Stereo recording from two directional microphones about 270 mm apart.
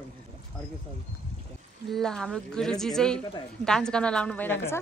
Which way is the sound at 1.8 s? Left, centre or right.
Centre.